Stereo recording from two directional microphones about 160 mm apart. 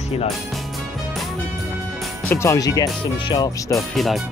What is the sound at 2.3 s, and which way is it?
Speech, 20° left (ahead or behind).